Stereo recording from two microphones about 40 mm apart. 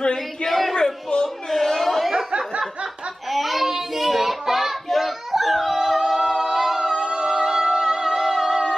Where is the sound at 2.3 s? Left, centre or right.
Right.